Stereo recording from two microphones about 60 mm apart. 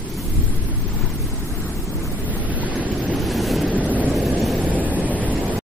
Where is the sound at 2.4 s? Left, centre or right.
Right.